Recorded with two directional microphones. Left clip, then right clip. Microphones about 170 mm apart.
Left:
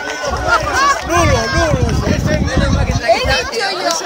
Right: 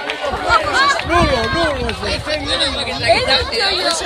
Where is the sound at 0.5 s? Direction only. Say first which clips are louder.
Left 1 dB; 65° left (ahead or behind).